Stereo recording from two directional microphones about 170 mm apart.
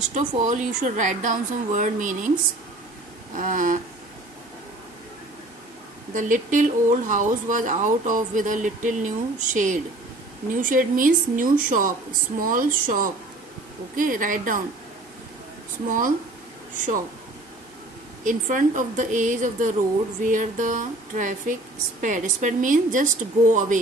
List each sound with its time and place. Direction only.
0.1 s speech: 45° right (ahead or behind)
3.3 s speech: 50° right (ahead or behind)
6.1 s speech: 50° right (ahead or behind)
16.7 s speech: 50° right (ahead or behind)
18.2 s speech: 50° right (ahead or behind)